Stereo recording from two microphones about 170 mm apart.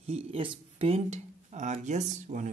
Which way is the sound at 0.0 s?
35° right (ahead or behind).